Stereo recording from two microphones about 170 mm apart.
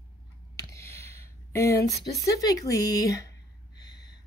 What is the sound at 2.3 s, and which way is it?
Speech, 20° left (ahead or behind).